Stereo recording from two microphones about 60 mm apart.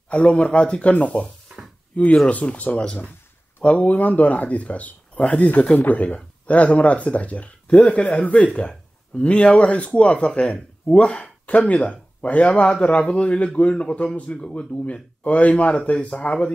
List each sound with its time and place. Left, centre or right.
0.1 s speech: centre